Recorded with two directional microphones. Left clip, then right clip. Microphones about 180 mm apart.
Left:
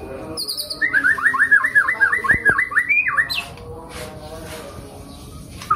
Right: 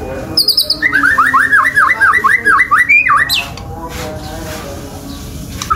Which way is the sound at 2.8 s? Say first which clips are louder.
Right 9 dB; 5° left (ahead or behind).